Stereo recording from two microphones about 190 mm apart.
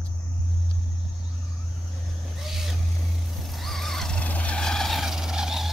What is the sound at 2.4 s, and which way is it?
Vehicle, centre (ahead or behind).